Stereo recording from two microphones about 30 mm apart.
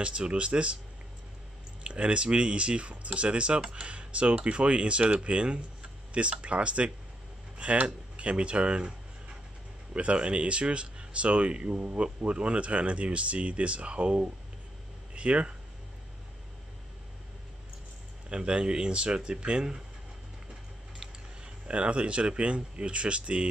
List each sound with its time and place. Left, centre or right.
0.0 s speech: right
1.8 s speech: right
9.9 s speech: right
11.8 s speech: right
18.3 s speech: right
21.6 s speech: right